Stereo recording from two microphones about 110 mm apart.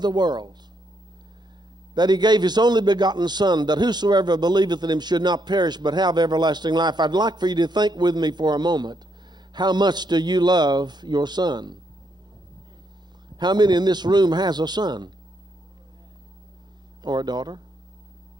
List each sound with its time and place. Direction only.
0.0 s a man's voice: 40° right (ahead or behind)
2.0 s a man's voice: 40° right (ahead or behind)
13.4 s a man's voice: 40° right (ahead or behind)
17.0 s a man's voice: 40° right (ahead or behind)